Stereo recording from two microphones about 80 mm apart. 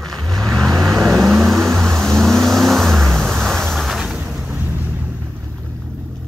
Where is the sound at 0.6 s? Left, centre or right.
Right.